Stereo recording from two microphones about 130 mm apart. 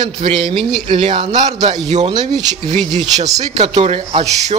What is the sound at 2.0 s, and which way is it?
Speech, 30° right (ahead or behind).